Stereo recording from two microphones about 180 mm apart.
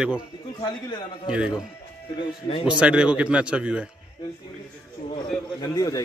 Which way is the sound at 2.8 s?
5° right (ahead or behind).